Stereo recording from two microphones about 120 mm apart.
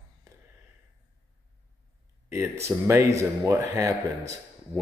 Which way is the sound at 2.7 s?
25° right (ahead or behind).